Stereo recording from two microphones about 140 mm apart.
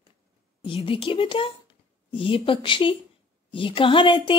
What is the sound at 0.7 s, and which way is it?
Speech, 40° left (ahead or behind).